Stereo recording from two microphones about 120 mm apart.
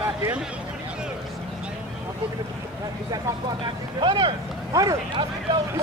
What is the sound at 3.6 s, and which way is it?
Speech, 40° right (ahead or behind).